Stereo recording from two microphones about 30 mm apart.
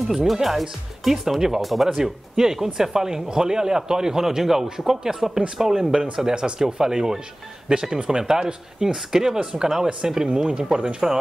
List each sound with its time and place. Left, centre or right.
0.1 s speech: centre
2.3 s speech: centre
9.4 s speech: right